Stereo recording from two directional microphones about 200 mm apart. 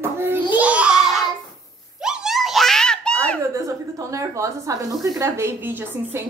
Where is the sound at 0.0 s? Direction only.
10° right (ahead or behind); by 3.3 s 5° left (ahead or behind).